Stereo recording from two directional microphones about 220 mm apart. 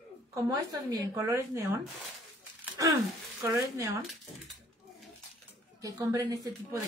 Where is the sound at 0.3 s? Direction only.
15° right (ahead or behind).